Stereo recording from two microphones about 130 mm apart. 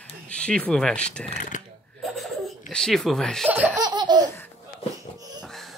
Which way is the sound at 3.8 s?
35° right (ahead or behind).